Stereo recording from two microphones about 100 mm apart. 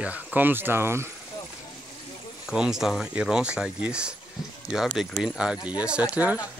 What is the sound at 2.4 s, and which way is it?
Speech, 5° right (ahead or behind).